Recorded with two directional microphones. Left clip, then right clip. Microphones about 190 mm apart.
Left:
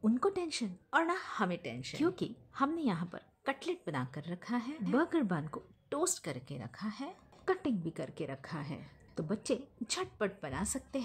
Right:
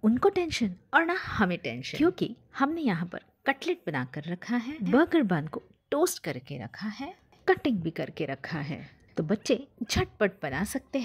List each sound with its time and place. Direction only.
0.0 s speech: 20° right (ahead or behind)